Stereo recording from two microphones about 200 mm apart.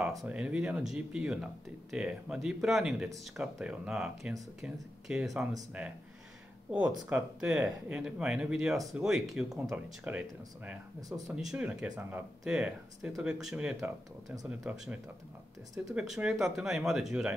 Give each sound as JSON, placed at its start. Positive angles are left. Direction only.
{"t": 0.0, "sound": "speech", "side_deg": 0}
{"t": 7.1, "sound": "speech", "side_deg": -10}
{"t": 13.7, "sound": "speech", "side_deg": -15}
{"t": 15.9, "sound": "speech", "side_deg": -5}